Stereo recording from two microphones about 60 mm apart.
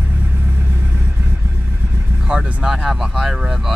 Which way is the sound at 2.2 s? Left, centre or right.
Centre.